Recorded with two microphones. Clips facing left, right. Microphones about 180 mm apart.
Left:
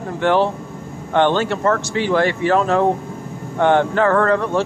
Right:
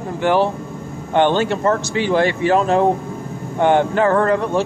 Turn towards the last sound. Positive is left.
turn(degrees=-15)  # may be behind; listen again after turning